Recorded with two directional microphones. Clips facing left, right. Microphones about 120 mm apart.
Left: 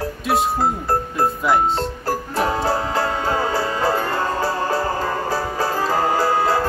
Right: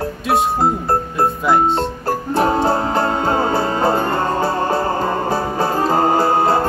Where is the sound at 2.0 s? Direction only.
25° right (ahead or behind).